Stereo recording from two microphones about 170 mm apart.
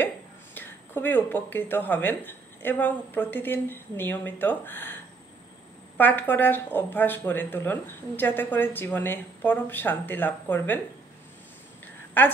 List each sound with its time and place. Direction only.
0.6 s speech: 10° left (ahead or behind)
5.9 s speech: 10° left (ahead or behind)
12.2 s speech: 10° left (ahead or behind)